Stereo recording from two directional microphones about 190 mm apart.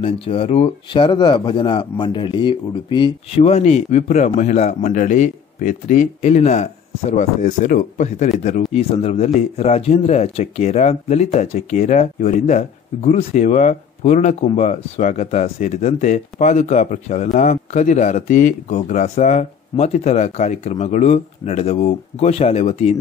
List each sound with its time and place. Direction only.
0.0 s speech: 30° left (ahead or behind)